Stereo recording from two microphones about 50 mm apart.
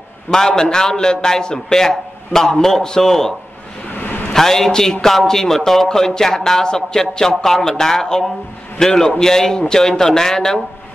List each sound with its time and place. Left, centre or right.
0.3 s speech: centre
3.9 s a sound: left
4.3 s speech: centre